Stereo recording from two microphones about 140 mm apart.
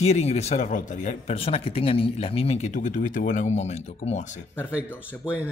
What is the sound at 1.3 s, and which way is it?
Speech, 45° left (ahead or behind).